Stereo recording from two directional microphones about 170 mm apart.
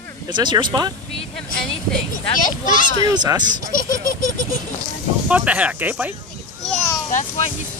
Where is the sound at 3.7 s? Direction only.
55° left (ahead or behind).